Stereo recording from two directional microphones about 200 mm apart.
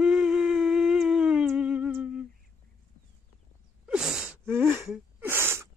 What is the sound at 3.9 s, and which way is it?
Sneeze, 5° right (ahead or behind).